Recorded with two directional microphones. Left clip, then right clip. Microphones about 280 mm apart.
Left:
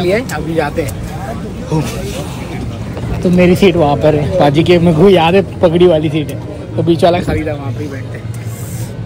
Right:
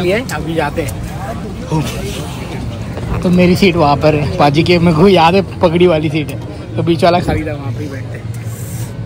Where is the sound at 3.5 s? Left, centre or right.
Right.